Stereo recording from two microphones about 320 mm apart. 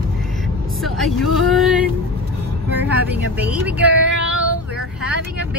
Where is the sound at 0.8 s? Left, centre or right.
Centre.